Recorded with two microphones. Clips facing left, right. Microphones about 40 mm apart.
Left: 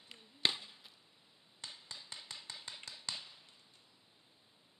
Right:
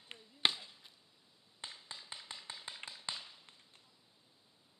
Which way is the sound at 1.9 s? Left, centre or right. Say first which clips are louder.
Right 1 dB; right.